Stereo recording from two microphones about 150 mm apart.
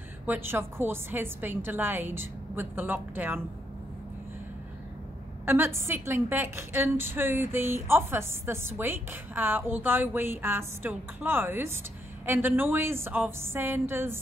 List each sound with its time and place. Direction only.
0.3 s a woman's voice: 15° right (ahead or behind)
5.4 s a woman's voice: 15° right (ahead or behind)